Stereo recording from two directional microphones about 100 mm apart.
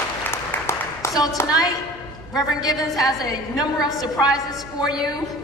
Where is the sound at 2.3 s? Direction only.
40° left (ahead or behind).